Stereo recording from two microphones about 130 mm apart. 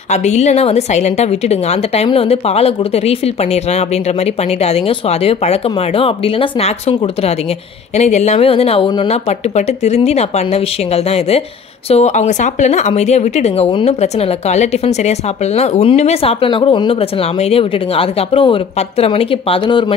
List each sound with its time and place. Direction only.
0.1 s a woman's voice: 60° left (ahead or behind)
4.6 s speech: 50° left (ahead or behind)
8.0 s a woman's voice: 60° left (ahead or behind)